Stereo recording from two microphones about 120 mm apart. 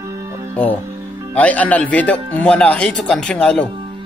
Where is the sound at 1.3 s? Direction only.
10° left (ahead or behind).